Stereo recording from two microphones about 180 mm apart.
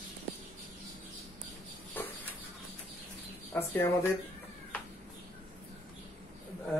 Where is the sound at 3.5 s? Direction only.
15° left (ahead or behind).